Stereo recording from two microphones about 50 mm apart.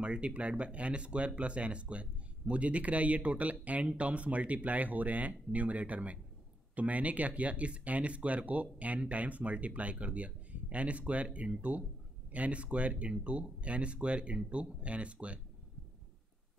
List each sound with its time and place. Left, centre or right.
0.0 s speech: right